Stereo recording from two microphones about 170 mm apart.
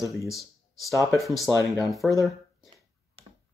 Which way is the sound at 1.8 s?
Centre (ahead or behind).